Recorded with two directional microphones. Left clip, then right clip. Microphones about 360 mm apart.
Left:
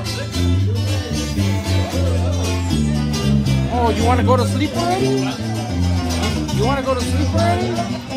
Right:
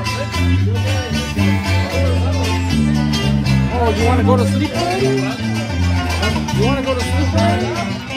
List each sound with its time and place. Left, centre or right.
4.1 s speech: centre